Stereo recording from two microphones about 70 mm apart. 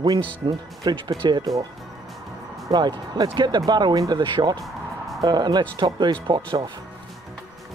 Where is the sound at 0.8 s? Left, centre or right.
Right.